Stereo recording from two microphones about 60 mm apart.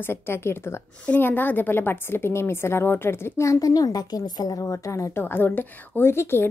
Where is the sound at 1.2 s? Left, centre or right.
Left.